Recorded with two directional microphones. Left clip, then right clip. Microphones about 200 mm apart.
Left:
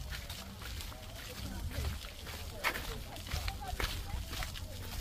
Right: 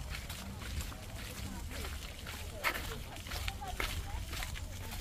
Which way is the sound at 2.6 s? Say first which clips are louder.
Even; 35° left (ahead or behind).